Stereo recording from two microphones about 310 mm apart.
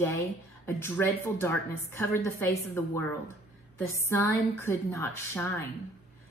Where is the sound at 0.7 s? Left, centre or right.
Centre.